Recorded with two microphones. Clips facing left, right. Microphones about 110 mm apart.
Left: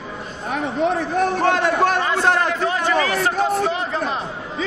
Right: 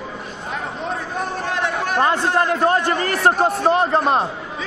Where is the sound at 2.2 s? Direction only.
80° left.